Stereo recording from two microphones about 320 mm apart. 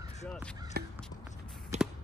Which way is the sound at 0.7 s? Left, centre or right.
Right.